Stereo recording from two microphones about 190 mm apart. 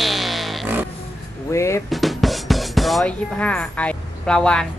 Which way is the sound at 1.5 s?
15° left (ahead or behind).